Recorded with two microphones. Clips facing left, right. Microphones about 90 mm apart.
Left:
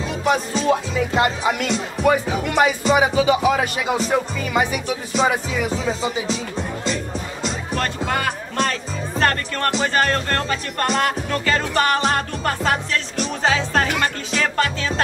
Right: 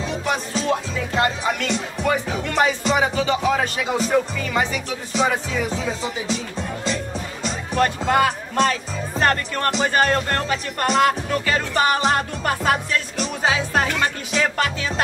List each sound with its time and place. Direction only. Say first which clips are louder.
0.1 s speech: left 6 dB; 5° left (ahead or behind)
7.7 s speech: right 6 dB; 15° right (ahead or behind)